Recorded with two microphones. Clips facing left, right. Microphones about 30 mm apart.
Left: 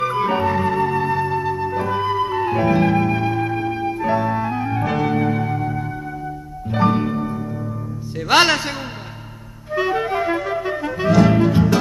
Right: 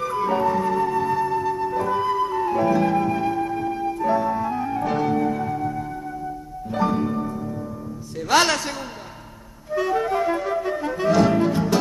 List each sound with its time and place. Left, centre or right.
0.0 s music: left
4.8 s organ: centre
5.1 s music: left
10.5 s clarinet: left
11.1 s music: centre